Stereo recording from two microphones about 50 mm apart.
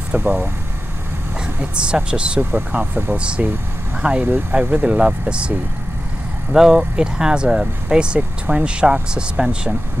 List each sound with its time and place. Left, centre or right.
0.1 s speech: right
1.6 s speech: right
2.5 s speech: right
3.2 s speech: right
4.5 s speech: right
4.8 s speech: right
6.5 s speech: centre